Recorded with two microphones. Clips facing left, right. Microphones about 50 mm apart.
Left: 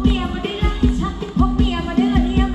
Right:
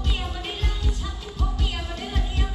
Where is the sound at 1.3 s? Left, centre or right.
Left.